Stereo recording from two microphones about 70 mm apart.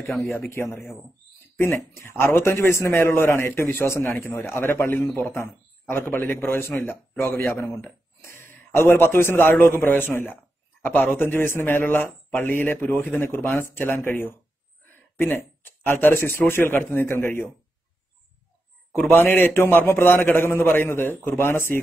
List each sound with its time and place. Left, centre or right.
2.0 s a man's voice: left
19.1 s a man's voice: left